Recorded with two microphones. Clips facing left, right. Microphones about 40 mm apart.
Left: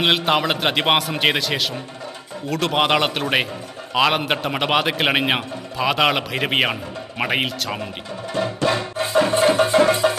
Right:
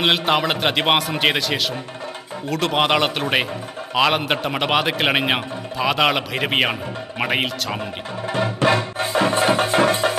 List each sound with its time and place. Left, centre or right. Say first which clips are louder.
0.0 s speech: even; centre
8.3 s music: right 2 dB; right